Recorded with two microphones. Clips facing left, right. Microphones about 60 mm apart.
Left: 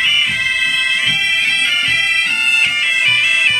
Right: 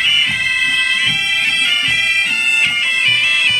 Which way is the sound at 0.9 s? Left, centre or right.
Left.